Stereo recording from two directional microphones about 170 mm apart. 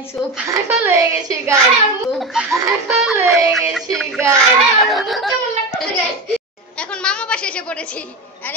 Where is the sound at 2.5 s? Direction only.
15° right (ahead or behind).